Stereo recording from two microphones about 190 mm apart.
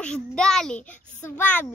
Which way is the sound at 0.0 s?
5° left (ahead or behind).